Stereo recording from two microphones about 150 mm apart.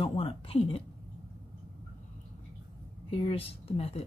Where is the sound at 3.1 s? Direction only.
40° left (ahead or behind).